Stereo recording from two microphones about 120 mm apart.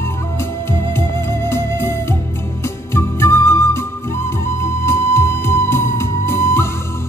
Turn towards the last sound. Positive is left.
turn(degrees=20)  # may be behind; listen again after turning